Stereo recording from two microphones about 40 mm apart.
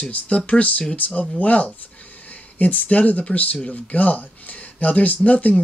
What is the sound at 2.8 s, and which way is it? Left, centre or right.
Speech, left.